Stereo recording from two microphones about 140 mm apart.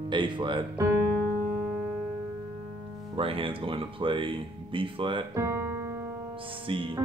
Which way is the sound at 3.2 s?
40° right (ahead or behind).